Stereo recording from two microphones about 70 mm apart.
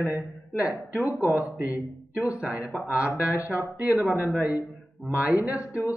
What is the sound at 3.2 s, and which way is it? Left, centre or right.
Speech, centre.